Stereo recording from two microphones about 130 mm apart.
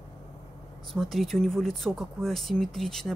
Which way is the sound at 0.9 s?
Centre (ahead or behind).